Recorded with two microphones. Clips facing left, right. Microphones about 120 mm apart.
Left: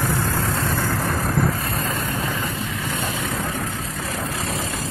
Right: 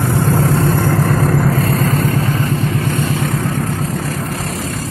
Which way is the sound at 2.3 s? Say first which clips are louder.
Right 9 dB; 40° right (ahead or behind).